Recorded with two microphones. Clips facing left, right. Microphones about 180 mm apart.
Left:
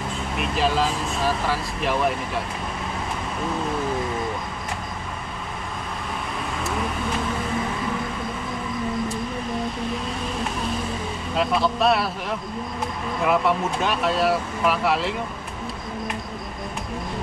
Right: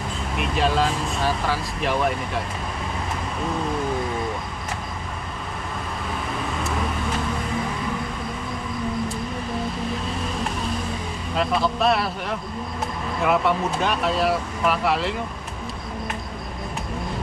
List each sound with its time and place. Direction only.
0.4 s speech: centre (ahead or behind)
11.3 s speech: centre (ahead or behind)